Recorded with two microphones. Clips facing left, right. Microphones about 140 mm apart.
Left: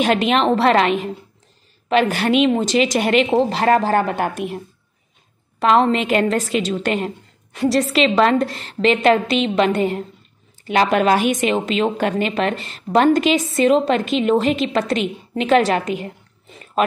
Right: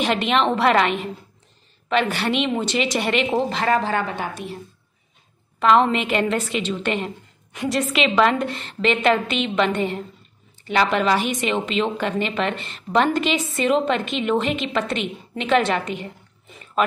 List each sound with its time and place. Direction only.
0.0 s a woman's voice: 40° left (ahead or behind)
5.6 s a woman's voice: 40° left (ahead or behind)